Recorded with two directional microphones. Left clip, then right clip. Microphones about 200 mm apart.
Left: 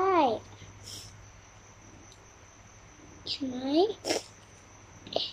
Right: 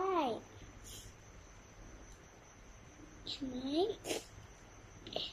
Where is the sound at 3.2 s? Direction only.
25° left (ahead or behind).